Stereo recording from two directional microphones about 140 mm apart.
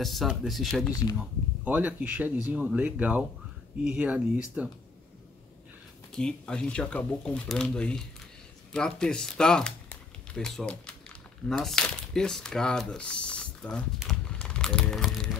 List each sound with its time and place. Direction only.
0.0 s speech: centre (ahead or behind)
0.8 s speech: 25° left (ahead or behind)
1.1 s speech: 10° right (ahead or behind)
6.1 s speech: 5° left (ahead or behind)